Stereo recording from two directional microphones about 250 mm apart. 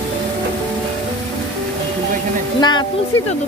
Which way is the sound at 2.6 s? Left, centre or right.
Centre.